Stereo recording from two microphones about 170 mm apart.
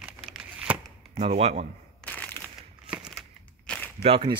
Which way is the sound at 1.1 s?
40° right (ahead or behind).